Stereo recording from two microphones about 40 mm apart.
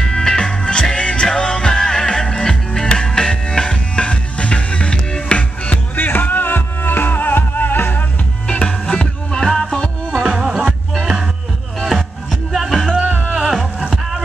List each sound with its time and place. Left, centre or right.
0.1 s music: centre
5.9 s music: left
8.5 s music: left
10.2 s music: centre
11.8 s music: centre